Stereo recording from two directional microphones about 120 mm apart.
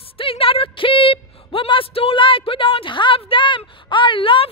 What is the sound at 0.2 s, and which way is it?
A woman's voice, 50° left (ahead or behind).